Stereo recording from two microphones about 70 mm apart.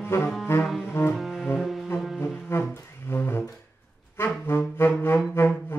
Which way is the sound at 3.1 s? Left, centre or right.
Left.